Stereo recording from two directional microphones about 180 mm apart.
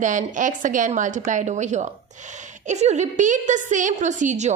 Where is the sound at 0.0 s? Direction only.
45° right (ahead or behind).